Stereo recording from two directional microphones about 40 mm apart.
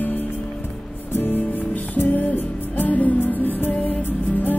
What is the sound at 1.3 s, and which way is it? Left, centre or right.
Music, left.